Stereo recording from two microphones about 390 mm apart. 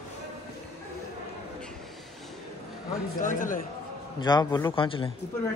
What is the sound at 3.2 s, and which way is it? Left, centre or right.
A man's voice, centre.